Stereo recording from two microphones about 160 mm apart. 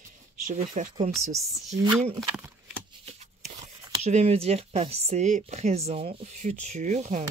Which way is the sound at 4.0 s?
40° right (ahead or behind).